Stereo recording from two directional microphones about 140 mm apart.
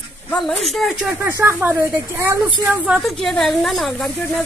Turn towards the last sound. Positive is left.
turn(degrees=0)  # may be behind; listen again after turning